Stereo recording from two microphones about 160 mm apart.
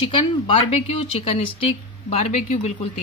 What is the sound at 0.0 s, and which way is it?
A woman's voice, 30° left (ahead or behind).